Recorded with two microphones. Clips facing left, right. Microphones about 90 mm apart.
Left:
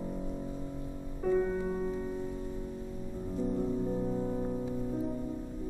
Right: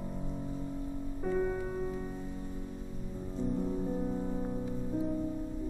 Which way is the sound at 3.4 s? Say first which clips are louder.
Left 1 dB; 5° left (ahead or behind).